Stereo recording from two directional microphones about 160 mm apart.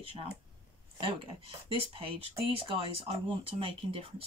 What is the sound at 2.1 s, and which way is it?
Speech, 35° right (ahead or behind).